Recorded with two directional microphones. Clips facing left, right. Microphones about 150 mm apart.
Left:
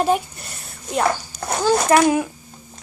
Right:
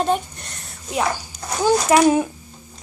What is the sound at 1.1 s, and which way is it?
A child's voice, 20° right (ahead or behind).